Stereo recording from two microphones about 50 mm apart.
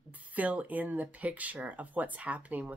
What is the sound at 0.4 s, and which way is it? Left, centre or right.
A woman's voice, right.